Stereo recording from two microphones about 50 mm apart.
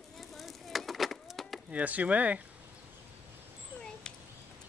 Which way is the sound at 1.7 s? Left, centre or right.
Right.